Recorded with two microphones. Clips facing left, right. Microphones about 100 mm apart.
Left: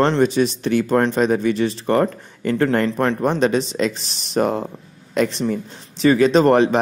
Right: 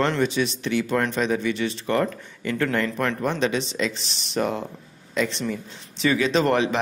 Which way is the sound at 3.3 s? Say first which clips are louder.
Left 6 dB; 45° left (ahead or behind).